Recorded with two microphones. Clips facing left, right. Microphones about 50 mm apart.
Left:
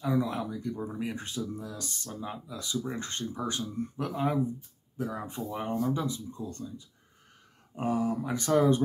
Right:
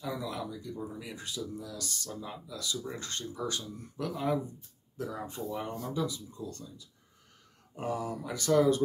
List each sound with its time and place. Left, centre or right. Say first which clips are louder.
0.0 s speech: left 7 dB; left
7.7 s speech: left 5 dB; left